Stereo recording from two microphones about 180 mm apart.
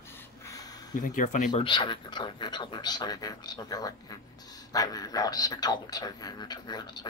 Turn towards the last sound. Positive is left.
turn(degrees=25)  # may be behind; listen again after turning